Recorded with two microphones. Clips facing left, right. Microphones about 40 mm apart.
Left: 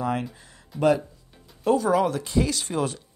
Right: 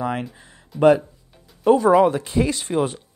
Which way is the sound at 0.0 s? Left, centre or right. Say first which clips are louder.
Right 2 dB; centre.